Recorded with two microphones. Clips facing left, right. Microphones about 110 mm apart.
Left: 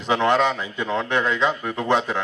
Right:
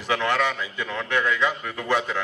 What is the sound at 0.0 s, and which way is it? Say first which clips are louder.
A man's voice: left 4 dB; 20° left (ahead or behind).